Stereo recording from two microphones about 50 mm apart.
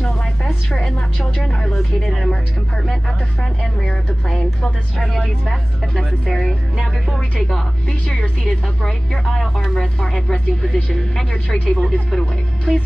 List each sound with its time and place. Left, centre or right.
0.0 s a woman's voice: centre
3.8 s speech: centre
9.2 s speech: centre
9.9 s speech: centre